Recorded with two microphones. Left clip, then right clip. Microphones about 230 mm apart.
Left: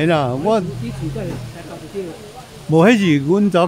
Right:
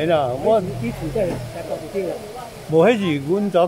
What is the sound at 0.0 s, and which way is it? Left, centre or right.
Speech, left.